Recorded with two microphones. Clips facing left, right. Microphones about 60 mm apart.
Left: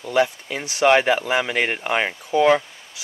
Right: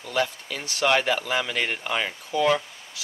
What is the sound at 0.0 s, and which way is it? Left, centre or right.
Speech, left.